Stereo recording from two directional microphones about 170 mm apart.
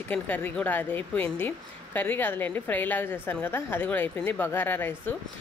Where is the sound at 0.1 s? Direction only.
10° left (ahead or behind).